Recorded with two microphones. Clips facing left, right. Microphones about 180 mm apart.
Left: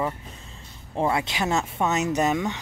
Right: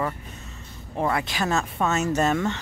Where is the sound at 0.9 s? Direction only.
25° left (ahead or behind).